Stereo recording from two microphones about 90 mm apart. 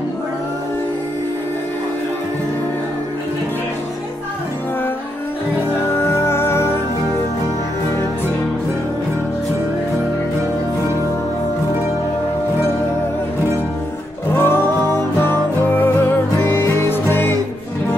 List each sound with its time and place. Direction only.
6.1 s music: 30° left (ahead or behind)
14.3 s music: 25° left (ahead or behind)